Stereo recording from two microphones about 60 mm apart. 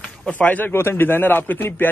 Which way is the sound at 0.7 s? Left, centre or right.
Left.